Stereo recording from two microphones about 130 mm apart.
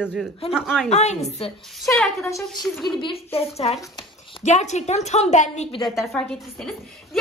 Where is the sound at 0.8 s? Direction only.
55° left (ahead or behind).